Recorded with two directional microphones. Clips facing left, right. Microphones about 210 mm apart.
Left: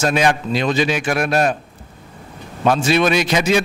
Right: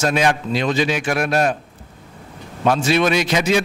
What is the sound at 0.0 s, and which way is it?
A man's voice, 20° left (ahead or behind).